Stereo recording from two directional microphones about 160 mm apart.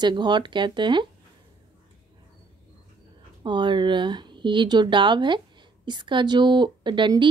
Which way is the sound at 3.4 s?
30° right (ahead or behind).